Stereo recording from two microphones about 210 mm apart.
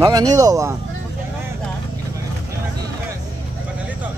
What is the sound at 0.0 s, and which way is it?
Speech, 20° right (ahead or behind).